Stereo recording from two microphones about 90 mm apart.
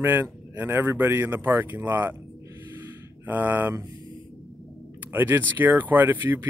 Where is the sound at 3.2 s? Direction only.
20° right (ahead or behind).